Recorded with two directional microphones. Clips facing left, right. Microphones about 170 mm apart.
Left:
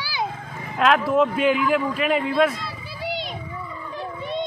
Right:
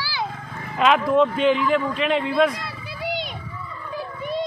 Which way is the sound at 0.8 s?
5° left (ahead or behind).